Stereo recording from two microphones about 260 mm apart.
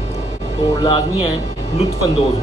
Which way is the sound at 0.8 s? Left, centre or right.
Centre.